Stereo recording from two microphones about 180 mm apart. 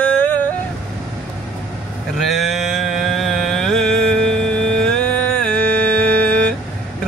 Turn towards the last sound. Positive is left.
turn(degrees=5)  # may be behind; listen again after turning